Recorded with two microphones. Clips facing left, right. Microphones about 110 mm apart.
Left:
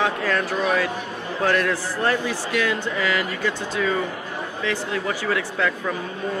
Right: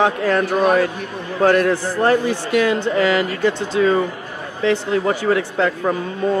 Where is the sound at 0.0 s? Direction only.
30° right (ahead or behind).